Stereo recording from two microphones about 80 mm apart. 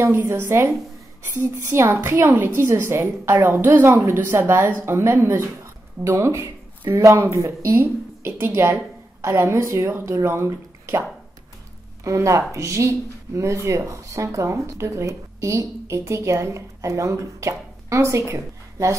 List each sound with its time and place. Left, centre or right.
0.1 s a woman's voice: right